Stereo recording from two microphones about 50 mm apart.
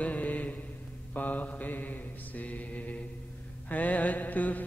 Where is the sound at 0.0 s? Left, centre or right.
Left.